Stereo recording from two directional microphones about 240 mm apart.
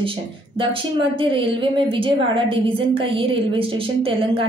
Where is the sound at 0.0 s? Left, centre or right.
Right.